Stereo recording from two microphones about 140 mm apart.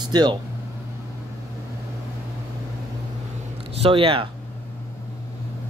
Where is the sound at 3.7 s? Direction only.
40° right (ahead or behind).